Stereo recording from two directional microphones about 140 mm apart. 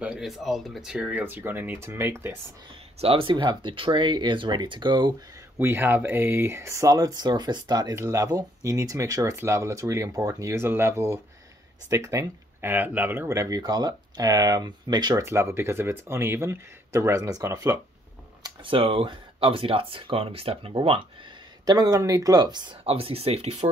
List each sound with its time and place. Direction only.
0.0 s speech: 5° right (ahead or behind)
3.0 s speech: 40° right (ahead or behind)
5.6 s speech: 15° right (ahead or behind)
15.2 s speech: 20° right (ahead or behind)
18.4 s speech: 40° right (ahead or behind)
21.6 s speech: 25° right (ahead or behind)
22.8 s speech: 45° right (ahead or behind)